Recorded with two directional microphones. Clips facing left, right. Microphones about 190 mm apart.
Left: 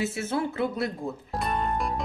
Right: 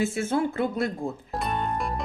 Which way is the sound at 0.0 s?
50° right (ahead or behind).